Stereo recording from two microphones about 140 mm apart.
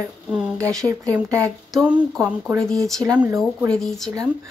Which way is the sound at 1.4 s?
5° left (ahead or behind).